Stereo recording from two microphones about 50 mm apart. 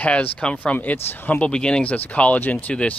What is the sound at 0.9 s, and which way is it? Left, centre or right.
Speech, left.